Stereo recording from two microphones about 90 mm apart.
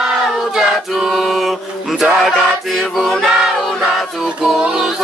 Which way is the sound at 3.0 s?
Centre (ahead or behind).